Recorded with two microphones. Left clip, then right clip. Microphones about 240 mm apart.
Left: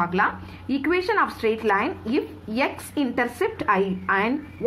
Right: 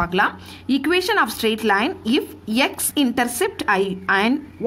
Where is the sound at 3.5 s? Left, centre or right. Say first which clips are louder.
Right 2 dB; right.